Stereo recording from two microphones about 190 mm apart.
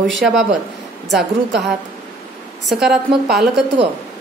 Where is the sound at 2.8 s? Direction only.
Centre (ahead or behind).